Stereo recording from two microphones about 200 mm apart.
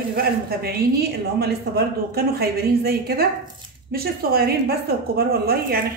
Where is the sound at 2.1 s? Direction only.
50° right (ahead or behind).